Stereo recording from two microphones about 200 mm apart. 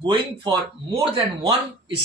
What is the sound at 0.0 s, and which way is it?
Speech, 25° right (ahead or behind).